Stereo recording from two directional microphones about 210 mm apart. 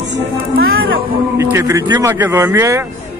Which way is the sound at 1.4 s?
10° right (ahead or behind).